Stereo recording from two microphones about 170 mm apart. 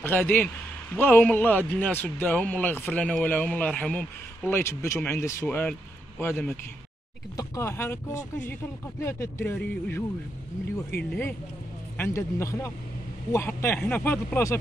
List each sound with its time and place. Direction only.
0.0 s speech: 10° left (ahead or behind)
7.3 s speech: 15° left (ahead or behind)